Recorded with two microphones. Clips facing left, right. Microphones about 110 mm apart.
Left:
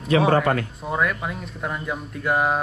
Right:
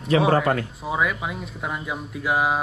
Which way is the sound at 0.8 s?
5° right (ahead or behind).